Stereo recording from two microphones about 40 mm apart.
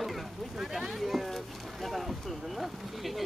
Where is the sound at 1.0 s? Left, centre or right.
Centre.